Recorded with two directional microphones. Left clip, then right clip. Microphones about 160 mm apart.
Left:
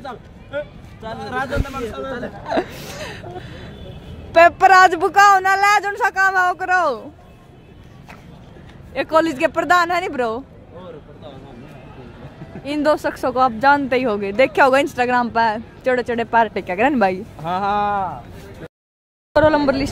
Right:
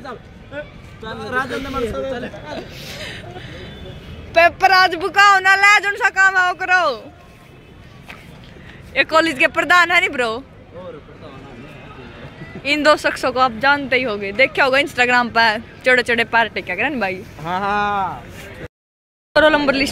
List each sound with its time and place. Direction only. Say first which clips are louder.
1.1 s speech: right 2 dB; 10° left (ahead or behind)
2.9 s speech: even; 45° left (ahead or behind)
4.3 s speech: left 2 dB; 65° left (ahead or behind)
8.9 s speech: right 2 dB; 30° left (ahead or behind)
12.6 s speech: right 4 dB; 25° left (ahead or behind); by 15.0 s 50° left (ahead or behind)
15.0 s speech: right 3 dB; 30° left (ahead or behind)
19.3 s speech: right 1 dB; 20° left (ahead or behind)